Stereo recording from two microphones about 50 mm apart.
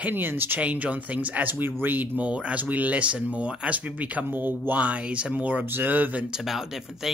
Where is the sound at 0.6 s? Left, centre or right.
Right.